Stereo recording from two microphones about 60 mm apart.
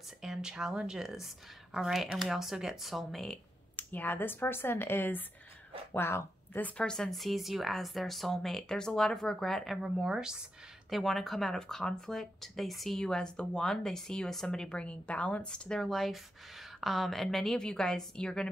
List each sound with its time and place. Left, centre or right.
0.2 s speech: centre
3.7 s a woman's voice: left
6.8 s speech: centre
9.8 s speech: centre
10.9 s speech: centre